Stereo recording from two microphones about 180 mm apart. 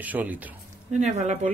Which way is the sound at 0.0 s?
10° right (ahead or behind).